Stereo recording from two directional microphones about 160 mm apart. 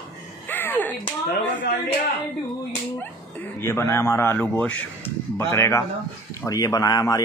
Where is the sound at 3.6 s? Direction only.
15° left (ahead or behind).